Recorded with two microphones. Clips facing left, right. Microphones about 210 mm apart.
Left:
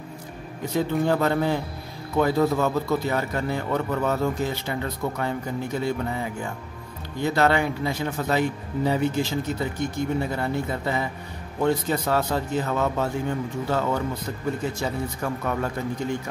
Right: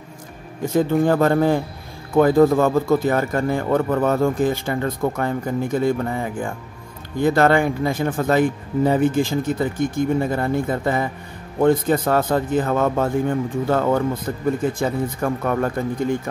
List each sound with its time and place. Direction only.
0.7 s a man's voice: 50° right (ahead or behind)